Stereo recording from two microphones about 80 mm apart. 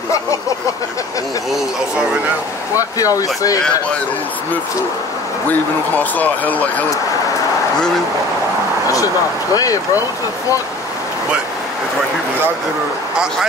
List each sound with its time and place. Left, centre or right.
2.7 s speech: left
5.5 s speech: left
8.8 s speech: left